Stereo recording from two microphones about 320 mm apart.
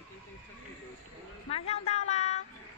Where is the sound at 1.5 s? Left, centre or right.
Centre.